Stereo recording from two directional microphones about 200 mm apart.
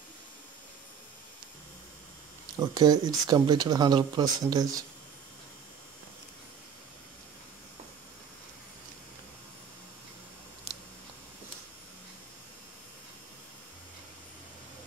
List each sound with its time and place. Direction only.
2.6 s speech: 20° right (ahead or behind)